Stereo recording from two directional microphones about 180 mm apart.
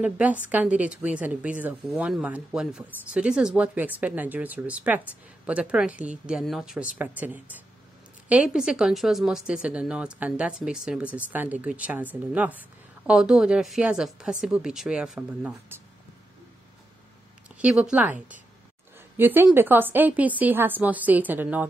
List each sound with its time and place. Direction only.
0.0 s speech: 10° right (ahead or behind)
17.6 s speech: 5° right (ahead or behind)